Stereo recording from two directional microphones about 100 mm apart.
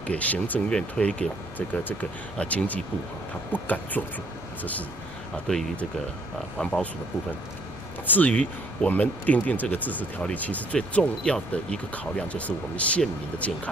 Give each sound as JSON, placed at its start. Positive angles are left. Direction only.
{"t": 0.0, "sound": "speech", "side_deg": 15}
{"t": 5.5, "sound": "speech", "side_deg": 5}
{"t": 8.1, "sound": "speech", "side_deg": 15}